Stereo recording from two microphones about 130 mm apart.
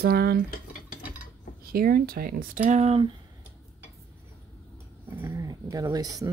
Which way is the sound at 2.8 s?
50° right (ahead or behind).